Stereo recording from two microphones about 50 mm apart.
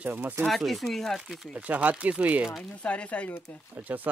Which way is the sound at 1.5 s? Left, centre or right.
Right.